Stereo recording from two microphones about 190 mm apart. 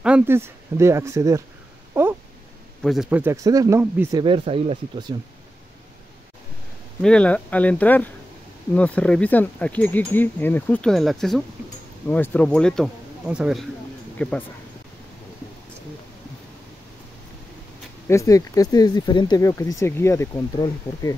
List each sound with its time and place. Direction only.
0.0 s speech: 10° right (ahead or behind)
2.0 s a sound: 10° right (ahead or behind)
2.8 s speech: centre (ahead or behind)
4.2 s speech: 30° right (ahead or behind)
7.0 s speech: 5° left (ahead or behind)
18.0 s speech: 15° left (ahead or behind)